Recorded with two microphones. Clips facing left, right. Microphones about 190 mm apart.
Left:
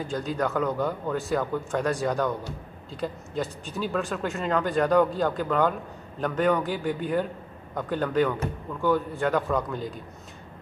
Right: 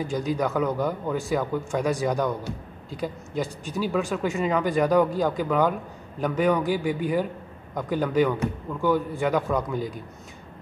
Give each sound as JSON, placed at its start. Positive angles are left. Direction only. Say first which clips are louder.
{"t": 0.0, "sound": "speech", "louder": "right 2 dB", "side_deg": -10}